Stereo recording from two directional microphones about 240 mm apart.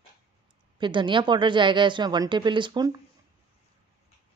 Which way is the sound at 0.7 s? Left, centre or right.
Centre.